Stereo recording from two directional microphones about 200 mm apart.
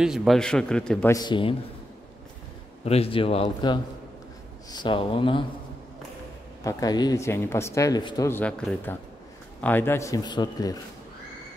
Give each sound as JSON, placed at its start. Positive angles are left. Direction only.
{"t": 0.0, "sound": "a man's voice", "side_deg": -5}
{"t": 1.1, "sound": "a man's voice", "side_deg": 20}
{"t": 2.8, "sound": "a man's voice", "side_deg": 30}
{"t": 6.6, "sound": "speech", "side_deg": 15}